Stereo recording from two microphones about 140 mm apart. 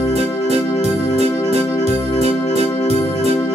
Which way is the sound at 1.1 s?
50° right (ahead or behind).